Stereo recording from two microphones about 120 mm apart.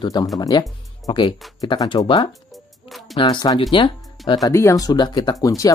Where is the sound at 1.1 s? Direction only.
50° left (ahead or behind).